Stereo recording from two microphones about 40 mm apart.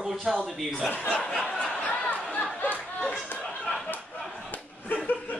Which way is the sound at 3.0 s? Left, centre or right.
Centre.